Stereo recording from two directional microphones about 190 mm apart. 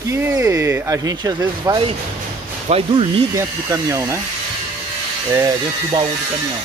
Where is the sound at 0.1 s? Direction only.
15° right (ahead or behind).